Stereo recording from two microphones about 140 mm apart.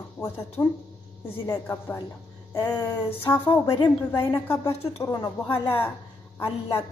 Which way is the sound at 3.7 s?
35° left (ahead or behind).